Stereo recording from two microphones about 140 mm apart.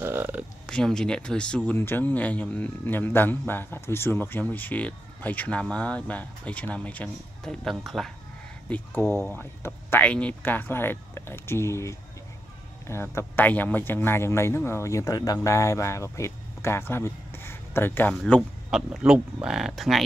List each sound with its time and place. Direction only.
0.0 s a sound: 15° right (ahead or behind)
0.7 s a man's voice: 5° left (ahead or behind)
8.6 s a man's voice: 10° left (ahead or behind)
18.1 s speech: 5° left (ahead or behind)